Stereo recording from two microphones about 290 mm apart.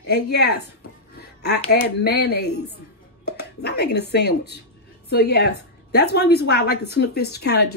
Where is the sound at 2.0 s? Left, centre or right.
Left.